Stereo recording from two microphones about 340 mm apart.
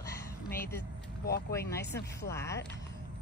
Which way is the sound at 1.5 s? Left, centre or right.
Centre.